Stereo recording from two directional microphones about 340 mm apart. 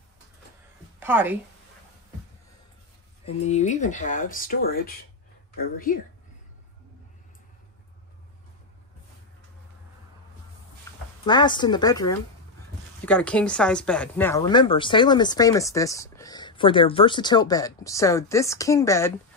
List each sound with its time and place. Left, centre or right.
0.9 s a woman's voice: centre
3.3 s speech: centre
11.2 s speech: centre